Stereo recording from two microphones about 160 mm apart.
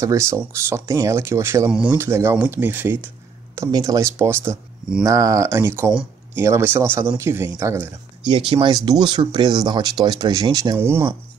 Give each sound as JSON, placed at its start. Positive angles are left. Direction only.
{"t": 0.0, "sound": "speech", "side_deg": -20}
{"t": 8.3, "sound": "speech", "side_deg": -30}